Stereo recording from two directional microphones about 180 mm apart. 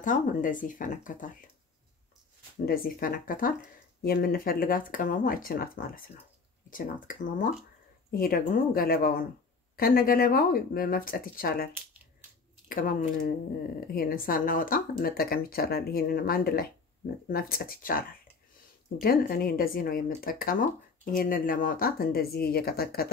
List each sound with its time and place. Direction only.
0.0 s speech: 45° left (ahead or behind)
2.6 s speech: 55° left (ahead or behind)